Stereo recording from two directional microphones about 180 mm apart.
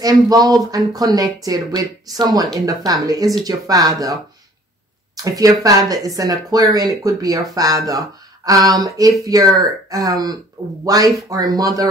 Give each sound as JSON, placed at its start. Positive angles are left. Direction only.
{"t": 0.0, "sound": "speech", "side_deg": -20}